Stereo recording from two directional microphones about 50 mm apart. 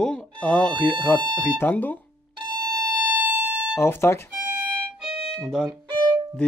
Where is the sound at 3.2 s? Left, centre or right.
Right.